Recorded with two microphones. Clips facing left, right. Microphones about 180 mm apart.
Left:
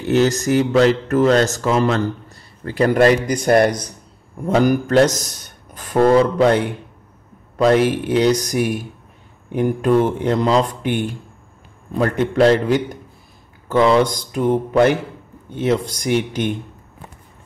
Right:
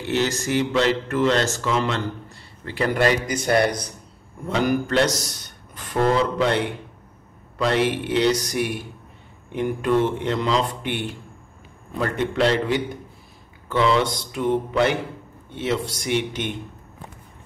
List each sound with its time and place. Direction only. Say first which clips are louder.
0.1 s mantra: left 7 dB; 45° left (ahead or behind)
2.6 s a man's voice: left 7 dB; 45° left (ahead or behind)
9.5 s mantra: left 5 dB; 45° left (ahead or behind)
12.0 s a man's voice: left 6 dB; 45° left (ahead or behind)